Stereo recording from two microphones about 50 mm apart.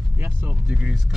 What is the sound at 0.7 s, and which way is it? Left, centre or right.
Speech, centre.